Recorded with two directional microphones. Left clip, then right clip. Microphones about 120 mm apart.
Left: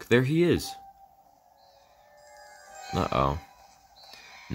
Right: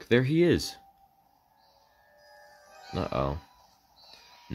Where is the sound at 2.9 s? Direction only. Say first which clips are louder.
Left 4 dB; 20° left (ahead or behind).